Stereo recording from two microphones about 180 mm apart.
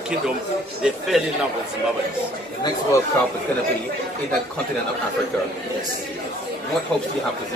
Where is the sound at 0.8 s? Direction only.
Centre (ahead or behind).